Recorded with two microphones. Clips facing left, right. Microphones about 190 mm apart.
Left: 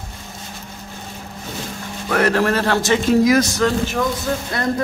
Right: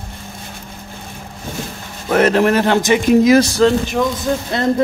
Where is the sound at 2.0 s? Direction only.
20° right (ahead or behind).